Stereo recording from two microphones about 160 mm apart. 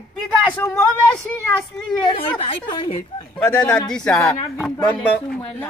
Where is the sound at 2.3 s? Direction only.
35° left (ahead or behind).